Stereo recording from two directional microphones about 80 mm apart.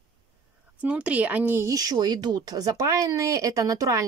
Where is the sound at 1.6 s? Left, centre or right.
Right.